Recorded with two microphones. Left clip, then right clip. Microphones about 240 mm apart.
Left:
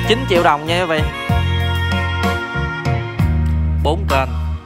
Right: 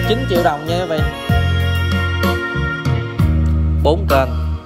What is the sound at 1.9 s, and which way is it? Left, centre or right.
Music, right.